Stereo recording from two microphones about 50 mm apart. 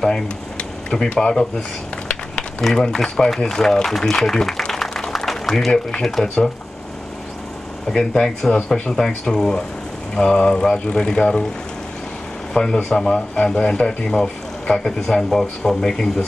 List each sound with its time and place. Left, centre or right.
0.8 s speech: centre
2.6 s speech: centre
3.9 s a sound: centre
5.7 s speech: centre
7.9 s speech: centre
12.5 s speech: centre